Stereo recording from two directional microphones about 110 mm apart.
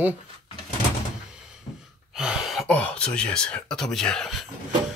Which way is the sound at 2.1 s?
5° right (ahead or behind).